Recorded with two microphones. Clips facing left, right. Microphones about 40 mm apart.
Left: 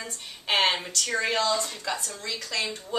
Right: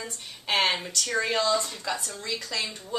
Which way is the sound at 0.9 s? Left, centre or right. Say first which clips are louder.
Even; centre.